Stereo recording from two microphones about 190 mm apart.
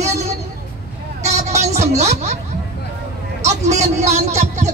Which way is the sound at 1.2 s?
35° right (ahead or behind).